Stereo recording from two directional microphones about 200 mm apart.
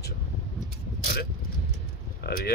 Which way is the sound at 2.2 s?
45° left (ahead or behind).